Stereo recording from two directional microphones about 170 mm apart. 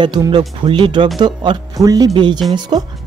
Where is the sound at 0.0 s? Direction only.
25° right (ahead or behind).